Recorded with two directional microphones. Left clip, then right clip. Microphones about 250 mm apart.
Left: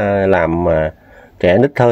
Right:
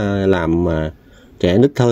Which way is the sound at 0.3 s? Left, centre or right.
Centre.